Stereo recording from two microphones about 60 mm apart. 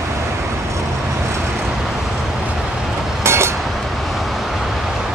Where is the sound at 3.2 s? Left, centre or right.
Right.